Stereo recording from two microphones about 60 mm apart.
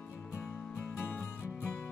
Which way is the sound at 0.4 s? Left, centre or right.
Left.